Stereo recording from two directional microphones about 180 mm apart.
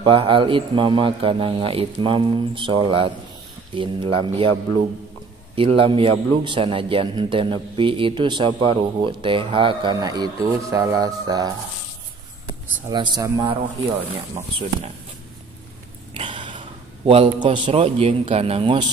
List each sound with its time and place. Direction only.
0.0 s a man's voice: 30° right (ahead or behind)
5.6 s a man's voice: 30° right (ahead or behind)
12.9 s a man's voice: 25° right (ahead or behind)
16.2 s a man's voice: 25° right (ahead or behind)